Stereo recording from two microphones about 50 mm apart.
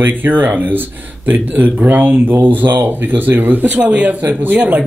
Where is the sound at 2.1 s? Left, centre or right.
Right.